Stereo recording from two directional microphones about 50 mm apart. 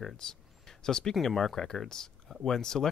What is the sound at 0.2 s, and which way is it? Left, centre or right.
Speech, centre.